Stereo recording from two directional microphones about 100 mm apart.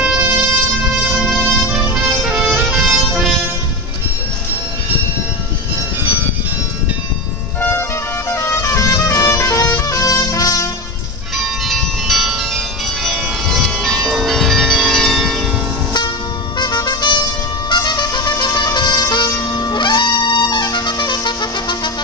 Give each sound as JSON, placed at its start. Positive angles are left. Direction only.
{"t": 0.0, "sound": "music", "side_deg": -15}
{"t": 8.3, "sound": "music", "side_deg": 25}
{"t": 11.3, "sound": "bell", "side_deg": 0}
{"t": 16.5, "sound": "music", "side_deg": 45}